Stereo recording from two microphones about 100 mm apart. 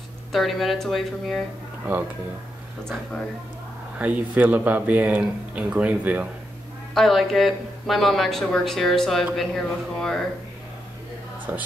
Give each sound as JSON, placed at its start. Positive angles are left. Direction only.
{"t": 0.3, "sound": "speech", "side_deg": 0}
{"t": 4.0, "sound": "speech", "side_deg": -15}
{"t": 6.9, "sound": "speech", "side_deg": 0}